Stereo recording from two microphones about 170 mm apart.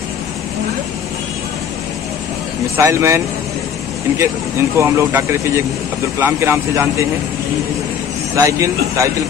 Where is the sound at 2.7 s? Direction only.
15° right (ahead or behind).